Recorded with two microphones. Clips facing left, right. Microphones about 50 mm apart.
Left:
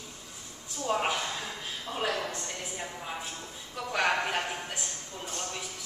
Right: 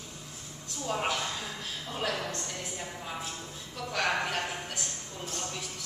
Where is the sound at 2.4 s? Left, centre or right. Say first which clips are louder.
Left 1 dB; centre.